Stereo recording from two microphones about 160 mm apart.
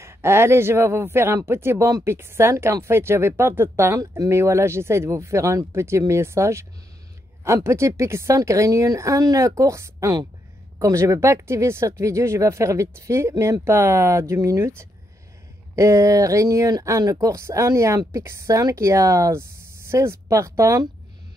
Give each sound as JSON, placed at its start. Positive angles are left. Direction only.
{"t": 0.0, "sound": "speech", "side_deg": -15}
{"t": 15.7, "sound": "speech", "side_deg": -20}